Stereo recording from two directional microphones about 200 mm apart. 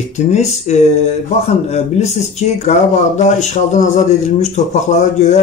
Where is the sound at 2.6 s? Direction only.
35° left (ahead or behind).